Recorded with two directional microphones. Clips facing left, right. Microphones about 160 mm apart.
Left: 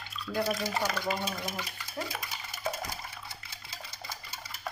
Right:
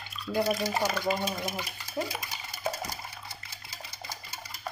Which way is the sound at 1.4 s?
10° right (ahead or behind).